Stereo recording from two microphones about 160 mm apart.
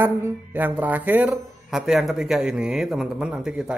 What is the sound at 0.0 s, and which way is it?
A man's voice, 15° right (ahead or behind).